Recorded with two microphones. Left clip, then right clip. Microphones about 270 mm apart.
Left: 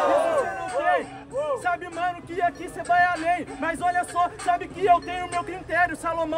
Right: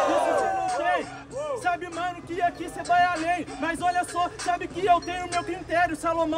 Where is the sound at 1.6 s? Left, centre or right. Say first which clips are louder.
Left 1 dB; centre.